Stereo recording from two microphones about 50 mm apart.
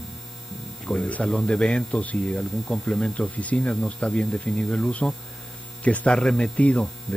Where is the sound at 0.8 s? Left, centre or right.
Left.